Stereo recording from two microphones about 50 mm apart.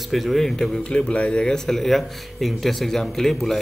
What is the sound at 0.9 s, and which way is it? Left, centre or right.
Speech, left.